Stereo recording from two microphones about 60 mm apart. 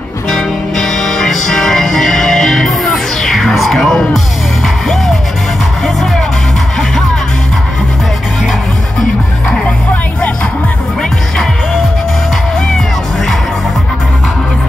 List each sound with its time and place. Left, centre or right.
0.3 s music: centre